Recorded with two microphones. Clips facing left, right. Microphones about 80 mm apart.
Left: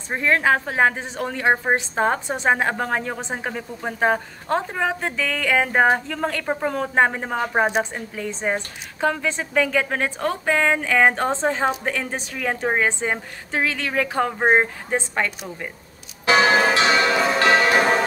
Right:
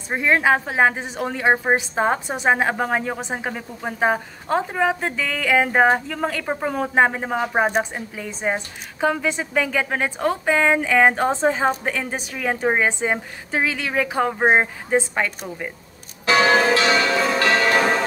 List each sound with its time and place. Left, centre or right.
0.1 s a woman's voice: centre
16.3 s change ringing: left